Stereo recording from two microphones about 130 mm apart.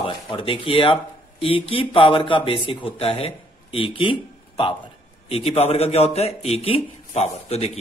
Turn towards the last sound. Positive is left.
turn(degrees=50)  # may be behind; listen again after turning